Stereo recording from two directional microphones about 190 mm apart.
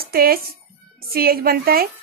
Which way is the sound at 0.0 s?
50° right (ahead or behind).